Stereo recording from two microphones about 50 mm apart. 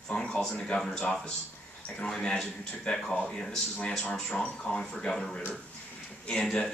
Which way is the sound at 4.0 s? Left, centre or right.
Left.